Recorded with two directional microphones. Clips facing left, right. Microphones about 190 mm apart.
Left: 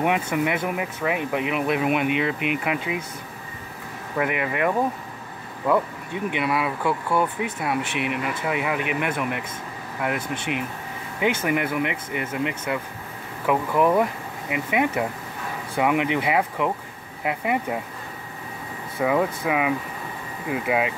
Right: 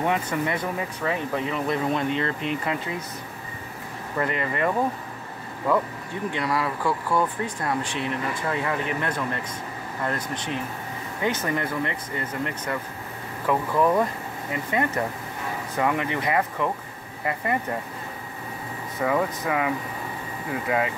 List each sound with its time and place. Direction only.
0.0 s speech: 15° left (ahead or behind)
4.2 s speech: 10° left (ahead or behind)
6.1 s speech: 15° left (ahead or behind)
7.5 s speech: 5° left (ahead or behind)
7.8 s speech: 20° left (ahead or behind)
18.9 s speech: 10° left (ahead or behind)